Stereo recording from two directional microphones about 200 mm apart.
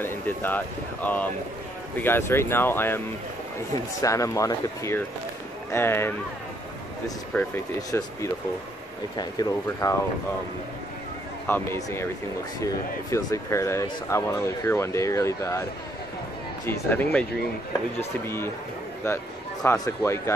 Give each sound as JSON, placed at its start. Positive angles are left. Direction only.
{"t": 0.0, "sound": "speech", "side_deg": 10}
{"t": 4.0, "sound": "speech", "side_deg": 15}
{"t": 7.3, "sound": "speech", "side_deg": 10}
{"t": 11.4, "sound": "speech", "side_deg": 10}
{"t": 13.1, "sound": "speech", "side_deg": 15}
{"t": 16.6, "sound": "speech", "side_deg": 10}
{"t": 19.6, "sound": "speech", "side_deg": 15}